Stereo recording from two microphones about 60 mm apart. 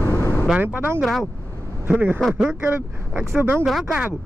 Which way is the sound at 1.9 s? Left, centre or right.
Right.